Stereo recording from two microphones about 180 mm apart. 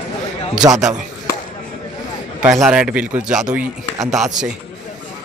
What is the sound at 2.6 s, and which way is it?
Speech, 5° right (ahead or behind).